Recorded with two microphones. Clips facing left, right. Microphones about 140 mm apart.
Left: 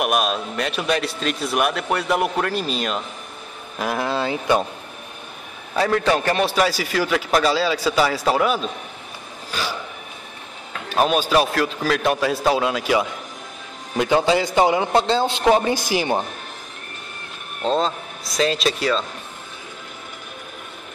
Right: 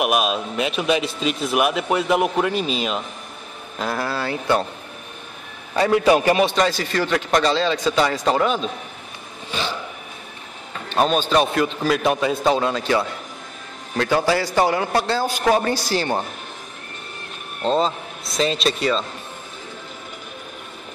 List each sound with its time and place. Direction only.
0.0 s speech: centre (ahead or behind)
3.7 s speech: 15° left (ahead or behind)
5.8 s a man's voice: 10° right (ahead or behind)
6.4 s speech: 5° left (ahead or behind)
9.5 s a sound: 5° left (ahead or behind)
10.7 s a man's voice: 5° left (ahead or behind)
17.6 s speech: centre (ahead or behind)